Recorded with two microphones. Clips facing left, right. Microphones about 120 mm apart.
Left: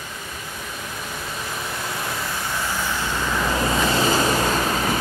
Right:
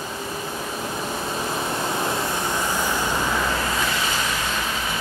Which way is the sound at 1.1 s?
30° right (ahead or behind).